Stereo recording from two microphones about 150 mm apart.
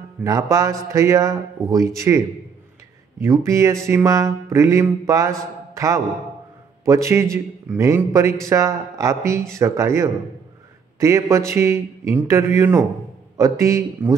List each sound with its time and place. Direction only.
0.2 s a man's voice: 20° right (ahead or behind)
6.8 s a man's voice: 20° right (ahead or behind)